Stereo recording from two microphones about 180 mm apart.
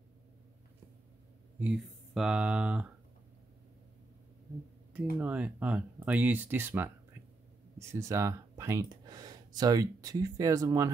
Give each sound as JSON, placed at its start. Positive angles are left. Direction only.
{"t": 1.6, "sound": "speech", "side_deg": -5}
{"t": 5.2, "sound": "speech", "side_deg": -10}
{"t": 7.9, "sound": "speech", "side_deg": -15}